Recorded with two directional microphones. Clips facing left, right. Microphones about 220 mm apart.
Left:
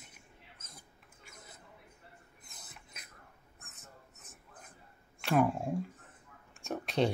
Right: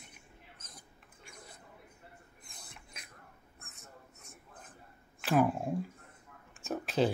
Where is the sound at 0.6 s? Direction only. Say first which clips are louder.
Right 1 dB; 25° left (ahead or behind).